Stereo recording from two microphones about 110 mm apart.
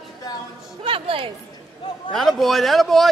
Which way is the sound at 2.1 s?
Centre (ahead or behind).